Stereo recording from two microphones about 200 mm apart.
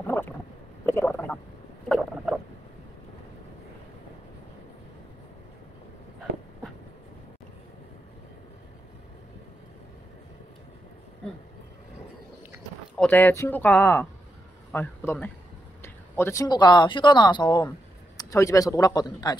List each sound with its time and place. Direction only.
0.0 s boat: 10° left (ahead or behind)
0.8 s a sound: 10° left (ahead or behind)
1.9 s frog: centre (ahead or behind)
12.9 s a man's voice: 5° left (ahead or behind)